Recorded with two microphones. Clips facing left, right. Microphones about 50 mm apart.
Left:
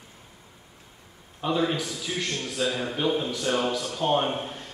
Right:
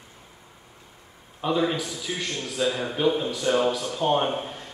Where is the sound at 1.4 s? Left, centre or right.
Centre.